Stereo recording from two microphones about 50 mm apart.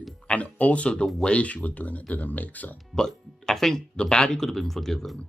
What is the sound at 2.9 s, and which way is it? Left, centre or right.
Speech, centre.